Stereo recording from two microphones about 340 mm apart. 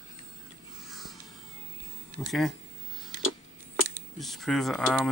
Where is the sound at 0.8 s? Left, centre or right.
Centre.